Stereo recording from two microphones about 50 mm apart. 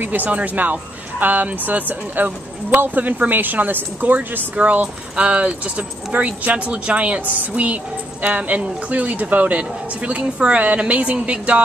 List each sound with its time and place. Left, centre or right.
0.0 s speech: right
4.6 s speech: right